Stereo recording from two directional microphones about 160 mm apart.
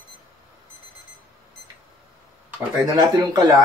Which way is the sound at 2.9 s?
25° right (ahead or behind).